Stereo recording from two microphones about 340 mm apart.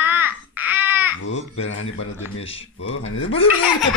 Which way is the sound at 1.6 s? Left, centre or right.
Left.